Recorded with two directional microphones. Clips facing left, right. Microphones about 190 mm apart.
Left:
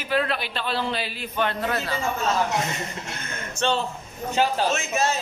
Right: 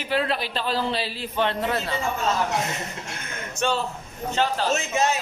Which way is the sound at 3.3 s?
15° right (ahead or behind).